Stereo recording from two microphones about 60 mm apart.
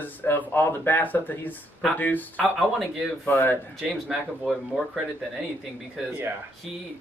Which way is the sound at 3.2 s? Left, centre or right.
Left.